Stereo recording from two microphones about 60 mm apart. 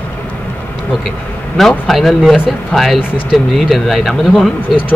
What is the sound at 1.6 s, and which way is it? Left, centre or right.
Speech, centre.